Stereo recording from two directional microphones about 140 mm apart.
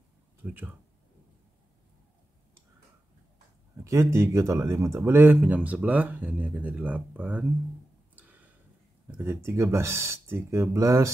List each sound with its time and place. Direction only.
0.4 s speech: 15° right (ahead or behind)
3.8 s speech: 20° right (ahead or behind)
9.0 s speech: 20° right (ahead or behind)